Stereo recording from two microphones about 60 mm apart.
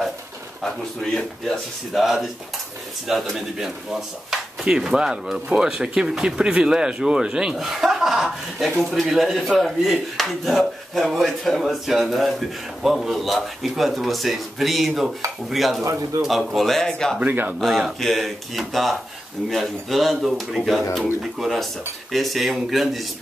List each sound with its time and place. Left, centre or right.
2.0 s speech: centre
17.2 s speech: right
17.6 s speech: centre